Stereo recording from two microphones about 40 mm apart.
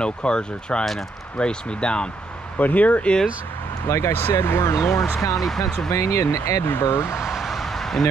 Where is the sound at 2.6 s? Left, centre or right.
Left.